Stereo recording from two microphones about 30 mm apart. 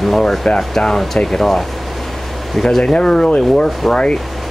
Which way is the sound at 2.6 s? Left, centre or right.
Centre.